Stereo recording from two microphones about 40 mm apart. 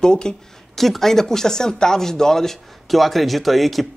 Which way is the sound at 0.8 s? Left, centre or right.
Centre.